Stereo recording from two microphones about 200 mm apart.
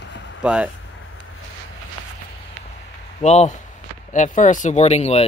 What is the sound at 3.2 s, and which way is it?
Speech, 35° left (ahead or behind).